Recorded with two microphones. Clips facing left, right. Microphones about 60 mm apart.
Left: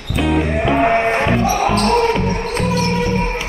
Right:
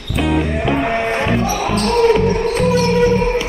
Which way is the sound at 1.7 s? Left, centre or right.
Left.